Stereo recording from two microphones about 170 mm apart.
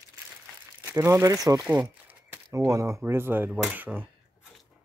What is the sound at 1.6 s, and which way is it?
Speech, 10° right (ahead or behind).